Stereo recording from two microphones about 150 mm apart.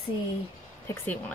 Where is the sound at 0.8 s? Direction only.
10° left (ahead or behind).